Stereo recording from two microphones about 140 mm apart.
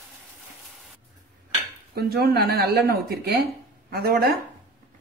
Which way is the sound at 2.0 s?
90° right.